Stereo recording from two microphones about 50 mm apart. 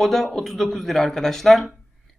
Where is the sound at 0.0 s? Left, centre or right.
Centre.